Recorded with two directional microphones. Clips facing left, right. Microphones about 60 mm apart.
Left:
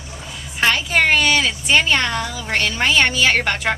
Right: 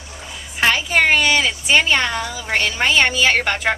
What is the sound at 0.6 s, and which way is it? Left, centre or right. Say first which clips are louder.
Speech: right 1 dB; centre.